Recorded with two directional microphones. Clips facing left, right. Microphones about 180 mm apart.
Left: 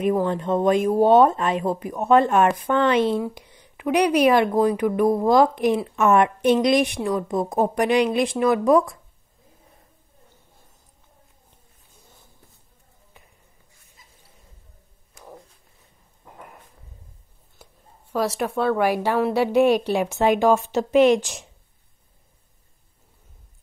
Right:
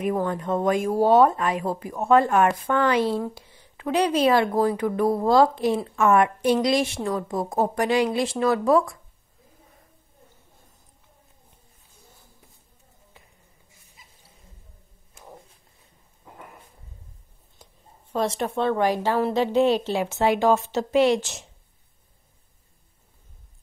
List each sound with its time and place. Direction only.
0.0 s speech: 25° left (ahead or behind)
18.1 s speech: 30° right (ahead or behind)
18.8 s a woman's voice: 10° left (ahead or behind)